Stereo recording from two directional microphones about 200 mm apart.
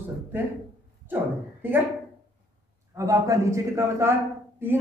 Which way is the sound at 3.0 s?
15° right (ahead or behind).